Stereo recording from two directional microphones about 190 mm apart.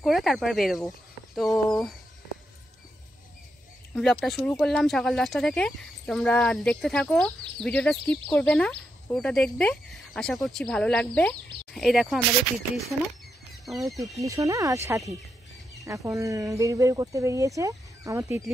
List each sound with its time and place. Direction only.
0.0 s speech: centre (ahead or behind)
3.9 s speech: 5° left (ahead or behind)
13.7 s speech: centre (ahead or behind)
14.1 s speech: 15° right (ahead or behind)